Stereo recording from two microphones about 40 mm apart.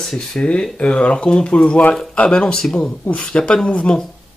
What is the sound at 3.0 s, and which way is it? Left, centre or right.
Speech, left.